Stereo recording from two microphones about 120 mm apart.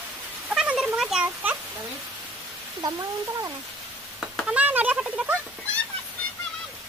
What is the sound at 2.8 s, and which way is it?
Speech, 30° right (ahead or behind).